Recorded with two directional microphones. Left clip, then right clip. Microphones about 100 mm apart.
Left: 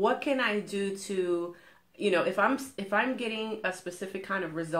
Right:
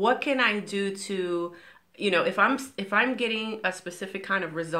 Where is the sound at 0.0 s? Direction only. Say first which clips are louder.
Right 4 dB; 15° right (ahead or behind).